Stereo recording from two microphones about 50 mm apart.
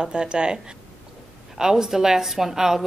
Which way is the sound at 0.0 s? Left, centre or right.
Centre.